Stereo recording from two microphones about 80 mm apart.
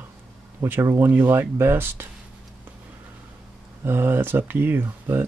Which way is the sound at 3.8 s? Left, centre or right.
Right.